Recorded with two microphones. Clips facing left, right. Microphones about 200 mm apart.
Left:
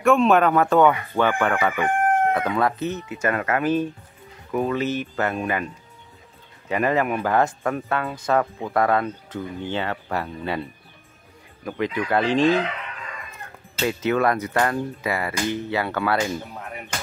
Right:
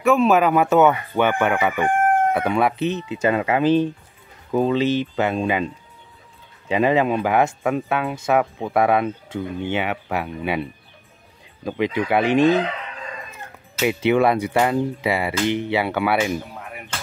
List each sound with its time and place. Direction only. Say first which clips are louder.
0.0 s speech: right 1 dB; centre (ahead or behind)
1.2 s speech: right 2 dB; 20° right (ahead or behind)
6.7 s speech: right 4 dB; 20° right (ahead or behind)
13.8 s speech: right 4 dB; 15° right (ahead or behind)